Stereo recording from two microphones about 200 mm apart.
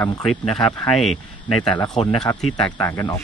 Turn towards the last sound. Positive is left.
turn(degrees=15)  # may be behind; listen again after turning